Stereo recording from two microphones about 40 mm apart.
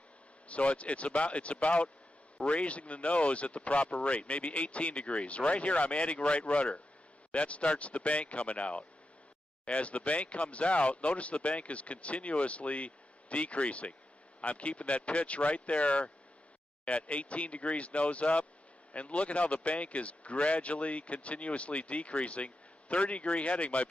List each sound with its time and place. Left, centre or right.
0.5 s speech: left